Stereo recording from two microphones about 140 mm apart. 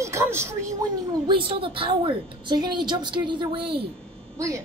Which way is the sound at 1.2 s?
40° right (ahead or behind).